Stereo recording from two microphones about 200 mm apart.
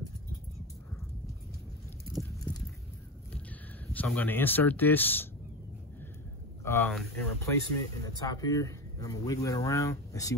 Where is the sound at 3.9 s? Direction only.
10° left (ahead or behind).